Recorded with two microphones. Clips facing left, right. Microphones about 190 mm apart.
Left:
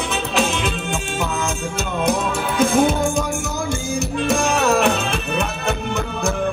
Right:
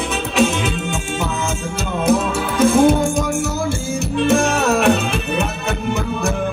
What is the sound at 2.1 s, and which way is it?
Music, 5° right (ahead or behind).